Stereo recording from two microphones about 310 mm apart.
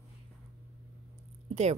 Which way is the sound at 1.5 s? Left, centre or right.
Centre.